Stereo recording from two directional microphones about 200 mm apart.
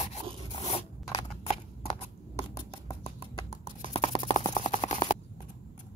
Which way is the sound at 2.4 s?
20° left (ahead or behind).